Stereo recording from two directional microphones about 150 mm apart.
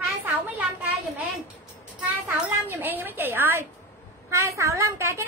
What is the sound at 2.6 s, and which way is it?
A woman's voice, 15° right (ahead or behind).